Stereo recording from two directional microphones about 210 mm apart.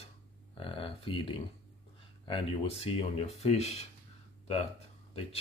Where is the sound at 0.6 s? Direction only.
25° left (ahead or behind).